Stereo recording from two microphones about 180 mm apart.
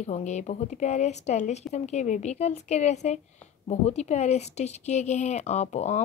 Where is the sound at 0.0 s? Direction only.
40° left (ahead or behind).